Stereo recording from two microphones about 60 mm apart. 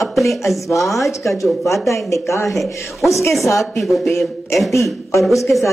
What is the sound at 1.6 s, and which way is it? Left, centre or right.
Speech, left.